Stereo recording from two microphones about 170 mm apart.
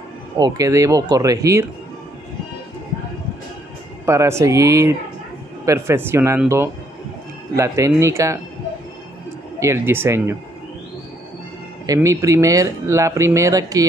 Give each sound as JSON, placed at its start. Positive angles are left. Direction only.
{"t": 0.4, "sound": "speech", "side_deg": -20}
{"t": 4.0, "sound": "speech", "side_deg": -15}
{"t": 7.5, "sound": "speech", "side_deg": -15}
{"t": 9.6, "sound": "speech", "side_deg": -15}
{"t": 11.8, "sound": "speech", "side_deg": -20}